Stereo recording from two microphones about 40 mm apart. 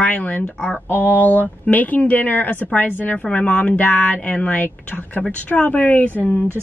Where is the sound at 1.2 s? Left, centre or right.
Left.